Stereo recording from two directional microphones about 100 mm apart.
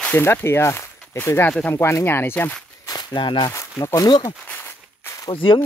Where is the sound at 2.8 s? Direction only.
40° left (ahead or behind).